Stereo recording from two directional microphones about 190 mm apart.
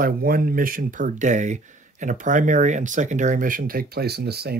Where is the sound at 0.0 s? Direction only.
50° right (ahead or behind).